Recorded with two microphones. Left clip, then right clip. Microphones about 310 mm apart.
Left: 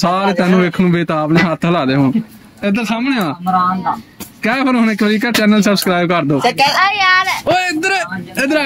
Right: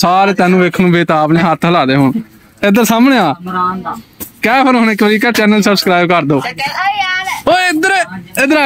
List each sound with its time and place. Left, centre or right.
0.0 s speech: centre
2.6 s speech: centre
4.4 s speech: centre
6.4 s a woman's voice: left
6.8 s speech: centre
7.4 s speech: centre